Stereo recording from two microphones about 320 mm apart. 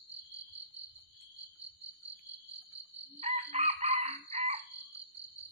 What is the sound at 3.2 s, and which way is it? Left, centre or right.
Chicken, centre.